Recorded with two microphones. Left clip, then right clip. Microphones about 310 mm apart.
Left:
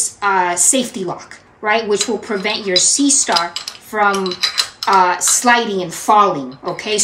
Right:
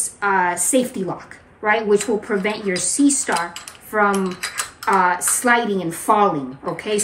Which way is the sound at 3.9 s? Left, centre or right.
Centre.